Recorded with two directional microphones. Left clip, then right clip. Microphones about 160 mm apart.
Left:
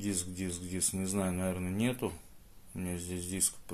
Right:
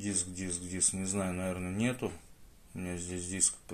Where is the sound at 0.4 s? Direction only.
5° left (ahead or behind).